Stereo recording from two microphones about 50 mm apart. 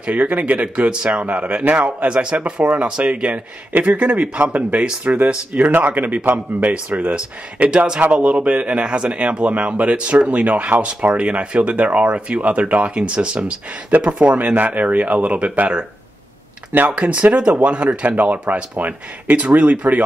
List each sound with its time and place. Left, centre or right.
0.0 s a man's voice: right
2.1 s a man's voice: centre
16.9 s a man's voice: right